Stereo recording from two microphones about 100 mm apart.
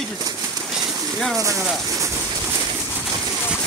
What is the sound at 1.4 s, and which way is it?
Speech, 30° right (ahead or behind).